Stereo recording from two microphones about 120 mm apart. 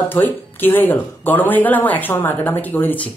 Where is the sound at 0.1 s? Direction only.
15° left (ahead or behind).